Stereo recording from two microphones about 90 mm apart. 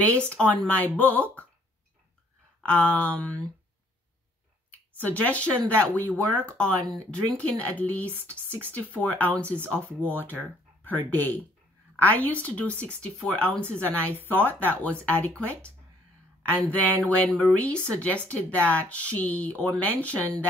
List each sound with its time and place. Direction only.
0.0 s speech: 15° left (ahead or behind)
2.6 s speech: 15° left (ahead or behind)
5.0 s speech: 15° left (ahead or behind)